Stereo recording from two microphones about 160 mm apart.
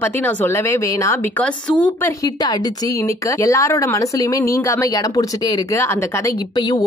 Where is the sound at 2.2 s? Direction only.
25° left (ahead or behind).